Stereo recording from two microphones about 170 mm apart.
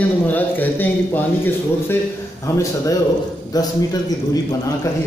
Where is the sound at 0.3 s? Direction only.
10° left (ahead or behind).